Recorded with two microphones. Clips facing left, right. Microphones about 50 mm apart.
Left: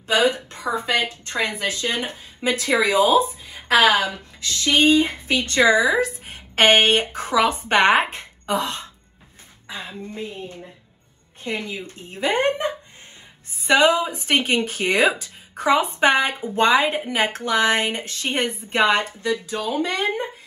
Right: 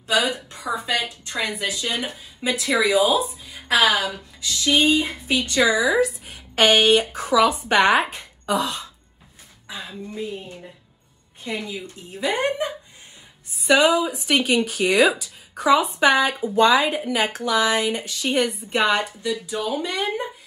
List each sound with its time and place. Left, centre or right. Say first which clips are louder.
0.0 s a woman's voice: left 3 dB; left